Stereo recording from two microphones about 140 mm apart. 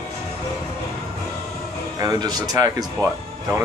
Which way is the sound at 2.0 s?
30° right (ahead or behind).